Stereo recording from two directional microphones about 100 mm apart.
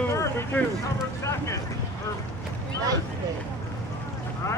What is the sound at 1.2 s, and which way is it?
Boat, 30° left (ahead or behind).